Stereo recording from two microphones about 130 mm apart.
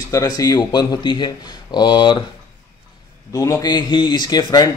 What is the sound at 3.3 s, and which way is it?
Speech, 25° left (ahead or behind).